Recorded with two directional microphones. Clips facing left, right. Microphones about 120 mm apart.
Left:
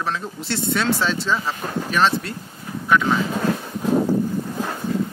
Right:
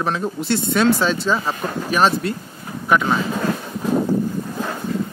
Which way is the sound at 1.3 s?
35° right (ahead or behind).